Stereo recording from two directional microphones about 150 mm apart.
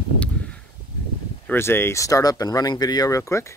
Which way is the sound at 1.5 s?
15° left (ahead or behind).